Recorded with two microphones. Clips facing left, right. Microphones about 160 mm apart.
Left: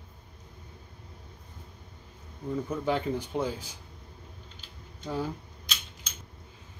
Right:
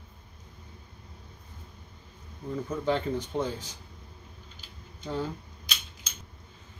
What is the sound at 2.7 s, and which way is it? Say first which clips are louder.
Speech: right 2 dB; 10° left (ahead or behind).